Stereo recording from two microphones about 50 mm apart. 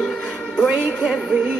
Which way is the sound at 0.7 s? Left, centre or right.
Right.